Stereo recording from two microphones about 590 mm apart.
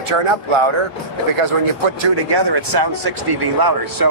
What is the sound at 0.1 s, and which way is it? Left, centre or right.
Speech, right.